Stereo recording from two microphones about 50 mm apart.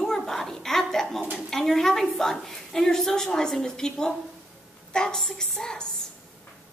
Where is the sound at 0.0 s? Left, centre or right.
Centre.